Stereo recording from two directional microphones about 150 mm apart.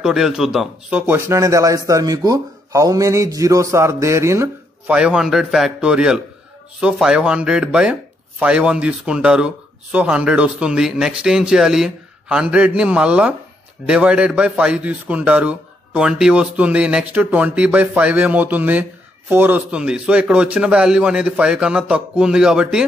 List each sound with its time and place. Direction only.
0.0 s a man's voice: 5° right (ahead or behind)